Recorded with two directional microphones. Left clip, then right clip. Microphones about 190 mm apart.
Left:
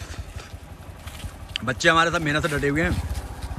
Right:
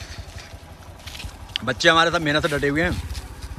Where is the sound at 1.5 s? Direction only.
5° right (ahead or behind).